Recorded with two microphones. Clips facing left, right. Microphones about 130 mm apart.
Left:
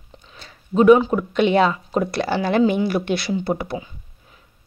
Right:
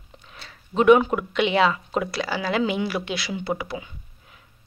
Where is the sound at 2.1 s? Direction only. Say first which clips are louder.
Left 5 dB; 55° left (ahead or behind).